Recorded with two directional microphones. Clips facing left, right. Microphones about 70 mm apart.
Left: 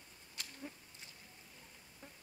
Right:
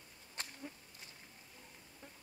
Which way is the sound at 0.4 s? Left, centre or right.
Right.